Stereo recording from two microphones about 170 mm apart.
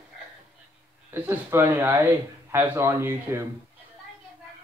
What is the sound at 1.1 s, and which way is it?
Speech, 15° right (ahead or behind).